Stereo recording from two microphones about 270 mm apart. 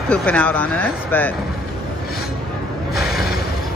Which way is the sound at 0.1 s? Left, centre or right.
Centre.